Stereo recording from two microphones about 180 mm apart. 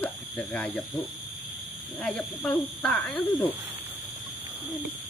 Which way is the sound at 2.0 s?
5° left (ahead or behind).